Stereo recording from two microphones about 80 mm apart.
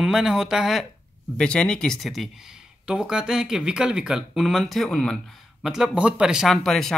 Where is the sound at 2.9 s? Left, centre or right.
Centre.